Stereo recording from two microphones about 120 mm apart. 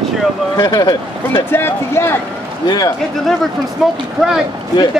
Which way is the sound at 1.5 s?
20° left (ahead or behind).